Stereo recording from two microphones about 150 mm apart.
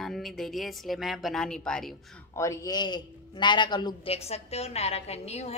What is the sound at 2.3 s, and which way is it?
A man's voice, 20° left (ahead or behind).